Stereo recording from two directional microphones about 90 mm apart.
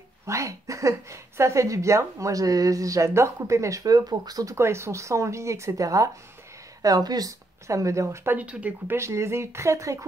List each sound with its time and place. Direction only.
0.3 s a woman's voice: 35° right (ahead or behind)
8.4 s speech: 15° right (ahead or behind)
8.9 s a woman's voice: 30° right (ahead or behind)